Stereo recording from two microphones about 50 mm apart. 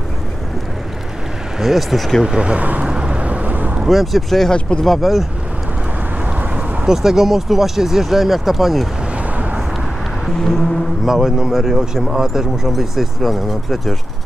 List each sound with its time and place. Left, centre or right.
1.6 s speech: centre
2.2 s speech: right
2.9 s vehicle: centre
3.8 s speech: centre
4.5 s music: centre
4.8 s speech: centre
6.9 s speech: centre
9.1 s a sound: right
10.2 s music: centre
11.1 s speech: centre